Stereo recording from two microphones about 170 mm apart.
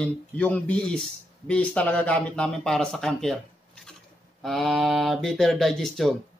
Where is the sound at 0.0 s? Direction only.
10° left (ahead or behind).